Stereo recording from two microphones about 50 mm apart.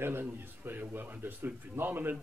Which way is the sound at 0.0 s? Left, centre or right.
Right.